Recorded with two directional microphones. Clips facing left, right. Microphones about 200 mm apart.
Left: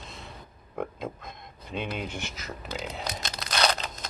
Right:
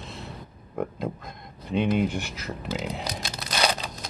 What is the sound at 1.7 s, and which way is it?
Speech, 55° right (ahead or behind).